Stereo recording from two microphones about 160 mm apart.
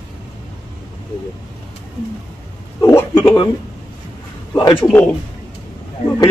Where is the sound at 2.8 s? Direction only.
15° left (ahead or behind).